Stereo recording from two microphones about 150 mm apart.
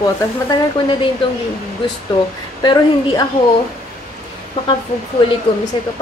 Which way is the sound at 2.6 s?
30° left (ahead or behind).